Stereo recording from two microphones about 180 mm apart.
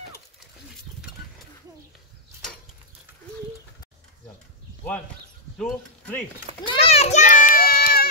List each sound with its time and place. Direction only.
5.6 s speech: 5° left (ahead or behind)
6.6 s children playing: 30° left (ahead or behind); by 8.1 s 55° left (ahead or behind)